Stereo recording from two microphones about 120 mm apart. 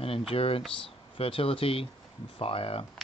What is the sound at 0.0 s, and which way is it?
Speech, 50° left (ahead or behind).